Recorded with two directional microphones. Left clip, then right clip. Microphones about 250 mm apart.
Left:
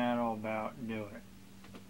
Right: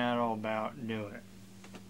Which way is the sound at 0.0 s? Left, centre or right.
Right.